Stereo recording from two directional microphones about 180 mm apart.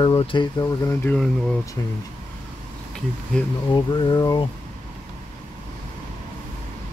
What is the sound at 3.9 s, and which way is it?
Speech, 25° left (ahead or behind).